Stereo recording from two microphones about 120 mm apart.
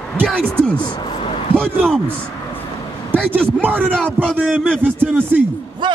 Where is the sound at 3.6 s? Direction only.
15° right (ahead or behind).